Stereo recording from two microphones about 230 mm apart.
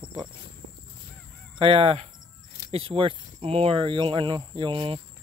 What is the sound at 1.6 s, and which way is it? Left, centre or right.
Speech, right.